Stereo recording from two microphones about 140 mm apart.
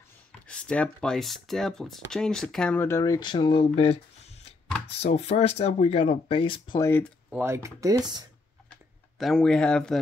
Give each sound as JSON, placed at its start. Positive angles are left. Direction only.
{"t": 0.5, "sound": "speech", "side_deg": 5}
{"t": 6.8, "sound": "speech", "side_deg": 15}
{"t": 7.2, "sound": "speech", "side_deg": -15}
{"t": 9.2, "sound": "speech", "side_deg": 5}